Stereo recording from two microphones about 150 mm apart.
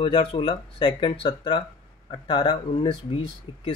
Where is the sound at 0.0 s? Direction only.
30° left (ahead or behind).